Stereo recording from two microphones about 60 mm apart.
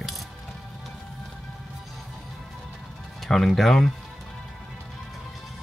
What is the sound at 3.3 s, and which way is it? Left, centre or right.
Speech, centre.